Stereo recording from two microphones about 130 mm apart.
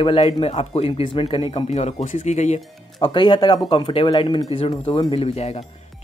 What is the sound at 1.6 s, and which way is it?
Speech, 60° left (ahead or behind).